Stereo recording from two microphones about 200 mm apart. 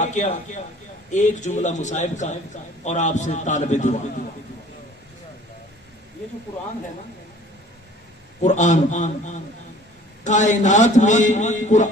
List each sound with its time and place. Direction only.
0.0 s a man's voice: 35° left (ahead or behind)
8.4 s a man's voice: 35° left (ahead or behind)